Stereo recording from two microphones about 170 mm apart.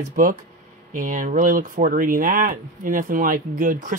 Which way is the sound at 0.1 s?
50° right (ahead or behind).